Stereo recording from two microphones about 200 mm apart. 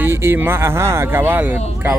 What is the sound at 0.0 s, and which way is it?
Speech, 10° right (ahead or behind).